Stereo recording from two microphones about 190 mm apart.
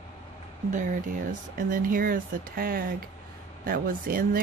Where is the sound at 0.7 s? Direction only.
40° right (ahead or behind).